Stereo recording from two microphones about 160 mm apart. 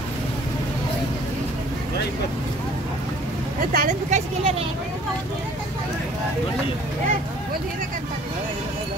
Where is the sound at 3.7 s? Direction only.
50° right (ahead or behind).